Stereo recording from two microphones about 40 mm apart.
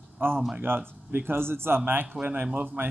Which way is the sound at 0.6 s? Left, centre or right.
Right.